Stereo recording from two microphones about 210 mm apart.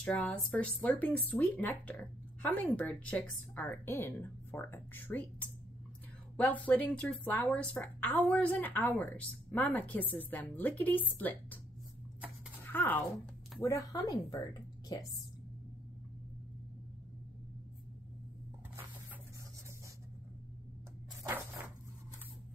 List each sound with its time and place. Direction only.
0.0 s speech: 5° left (ahead or behind)
12.7 s a woman's voice: 10° left (ahead or behind)
21.2 s a sound: 15° right (ahead or behind)